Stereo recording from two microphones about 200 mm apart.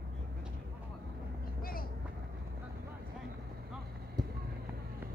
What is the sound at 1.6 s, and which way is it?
Vehicle, 45° left (ahead or behind).